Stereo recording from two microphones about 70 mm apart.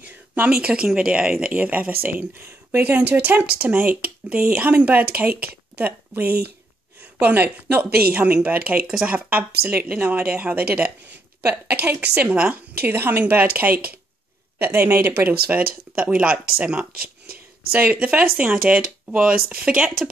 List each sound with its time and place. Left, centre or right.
0.5 s speech: centre
8.8 s speech: centre
9.1 s speech: right
15.4 s speech: centre